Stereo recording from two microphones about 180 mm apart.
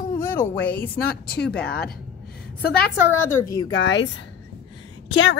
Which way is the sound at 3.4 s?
20° left (ahead or behind).